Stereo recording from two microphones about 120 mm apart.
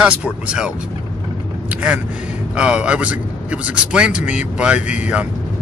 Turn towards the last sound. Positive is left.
turn(degrees=-10)  # may be behind; listen again after turning